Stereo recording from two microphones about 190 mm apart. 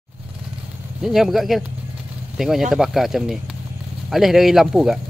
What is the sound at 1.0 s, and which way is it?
Speech, centre (ahead or behind).